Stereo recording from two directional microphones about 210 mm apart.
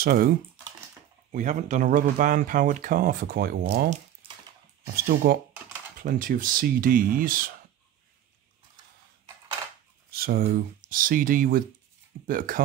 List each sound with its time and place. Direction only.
0.0 s speech: 45° right (ahead or behind)
1.3 s speech: 35° right (ahead or behind)
10.1 s speech: 45° right (ahead or behind)